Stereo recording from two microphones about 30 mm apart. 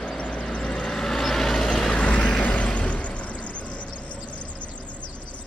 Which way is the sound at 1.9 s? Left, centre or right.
Left.